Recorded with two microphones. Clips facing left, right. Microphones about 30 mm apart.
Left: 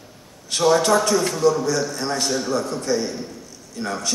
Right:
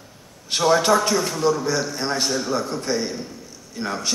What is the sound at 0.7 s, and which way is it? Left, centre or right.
A man's voice, centre.